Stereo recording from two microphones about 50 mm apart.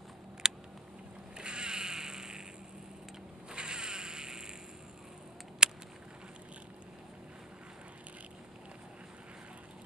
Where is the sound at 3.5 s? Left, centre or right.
Centre.